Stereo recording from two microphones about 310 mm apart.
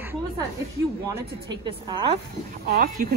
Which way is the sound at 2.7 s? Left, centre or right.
Right.